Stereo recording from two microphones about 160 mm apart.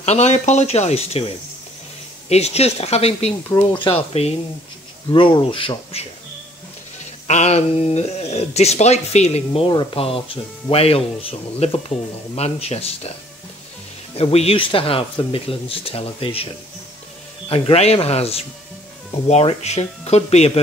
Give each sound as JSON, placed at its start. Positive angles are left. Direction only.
{"t": 0.0, "sound": "speech", "side_deg": 45}
{"t": 2.2, "sound": "speech", "side_deg": 40}
{"t": 7.2, "sound": "speech", "side_deg": 45}
{"t": 14.1, "sound": "speech", "side_deg": 40}
{"t": 17.5, "sound": "speech", "side_deg": 35}